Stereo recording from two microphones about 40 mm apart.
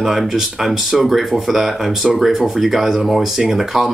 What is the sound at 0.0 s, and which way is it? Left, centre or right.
Speech, centre.